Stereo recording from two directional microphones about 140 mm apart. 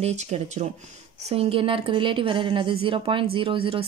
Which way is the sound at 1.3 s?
40° right (ahead or behind).